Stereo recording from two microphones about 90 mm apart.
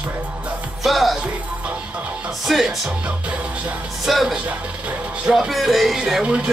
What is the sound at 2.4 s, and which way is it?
Speech, centre (ahead or behind).